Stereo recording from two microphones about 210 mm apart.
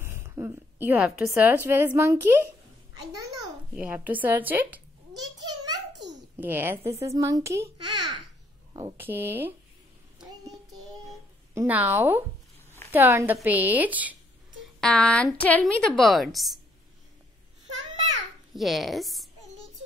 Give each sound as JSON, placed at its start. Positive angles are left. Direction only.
{"t": 0.0, "sound": "a woman's voice", "side_deg": -10}
{"t": 6.0, "sound": "babbling", "side_deg": -10}
{"t": 6.9, "sound": "a woman's voice", "side_deg": -15}
{"t": 10.7, "sound": "child singing", "side_deg": 0}
{"t": 11.5, "sound": "a woman's voice", "side_deg": -10}
{"t": 14.8, "sound": "a woman's voice", "side_deg": 5}
{"t": 18.5, "sound": "a woman's voice", "side_deg": 0}